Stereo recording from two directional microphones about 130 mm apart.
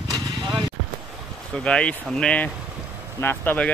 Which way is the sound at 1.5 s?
5° left (ahead or behind).